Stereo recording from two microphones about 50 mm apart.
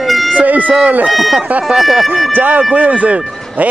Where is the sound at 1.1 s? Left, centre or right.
Centre.